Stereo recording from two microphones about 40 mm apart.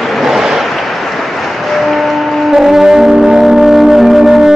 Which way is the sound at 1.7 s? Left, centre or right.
Centre.